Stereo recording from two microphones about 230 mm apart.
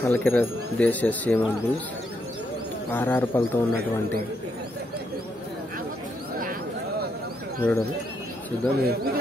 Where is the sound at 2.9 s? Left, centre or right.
Centre.